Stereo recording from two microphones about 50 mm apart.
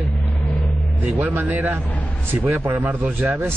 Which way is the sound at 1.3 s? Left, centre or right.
Right.